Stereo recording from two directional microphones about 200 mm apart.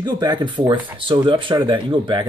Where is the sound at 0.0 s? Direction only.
20° right (ahead or behind).